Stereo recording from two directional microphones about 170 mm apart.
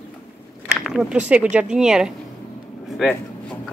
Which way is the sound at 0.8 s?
Centre (ahead or behind).